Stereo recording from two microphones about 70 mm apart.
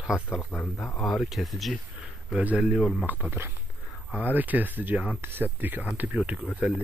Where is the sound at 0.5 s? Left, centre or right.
Left.